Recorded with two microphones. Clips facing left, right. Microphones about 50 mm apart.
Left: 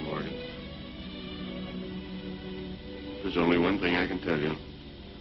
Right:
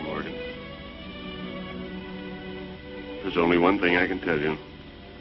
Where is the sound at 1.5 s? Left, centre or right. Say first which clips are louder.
Right 2 dB; right.